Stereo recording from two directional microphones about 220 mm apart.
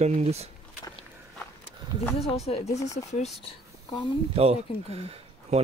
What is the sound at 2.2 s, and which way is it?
Speech, 30° left (ahead or behind).